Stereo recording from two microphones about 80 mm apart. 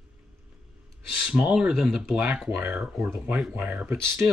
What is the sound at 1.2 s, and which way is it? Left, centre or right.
Speech, centre.